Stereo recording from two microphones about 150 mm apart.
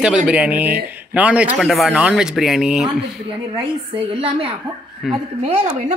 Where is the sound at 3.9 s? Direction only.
40° right (ahead or behind).